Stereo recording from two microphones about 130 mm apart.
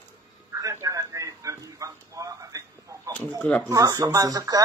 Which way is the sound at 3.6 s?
25° right (ahead or behind).